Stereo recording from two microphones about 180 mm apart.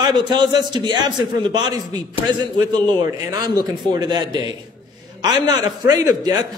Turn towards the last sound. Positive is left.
turn(degrees=-20)  # may be behind; listen again after turning